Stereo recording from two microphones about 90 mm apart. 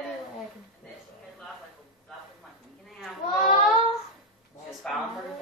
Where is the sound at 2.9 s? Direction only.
Centre (ahead or behind).